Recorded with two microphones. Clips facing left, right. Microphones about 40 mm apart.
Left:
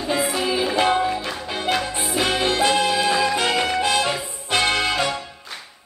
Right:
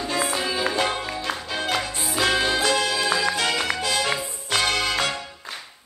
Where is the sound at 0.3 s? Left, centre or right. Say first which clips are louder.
Left 3 dB; centre.